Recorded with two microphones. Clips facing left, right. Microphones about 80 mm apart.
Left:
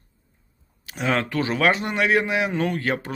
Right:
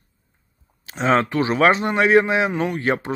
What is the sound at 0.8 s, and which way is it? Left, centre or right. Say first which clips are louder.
A man's voice: right 5 dB; right.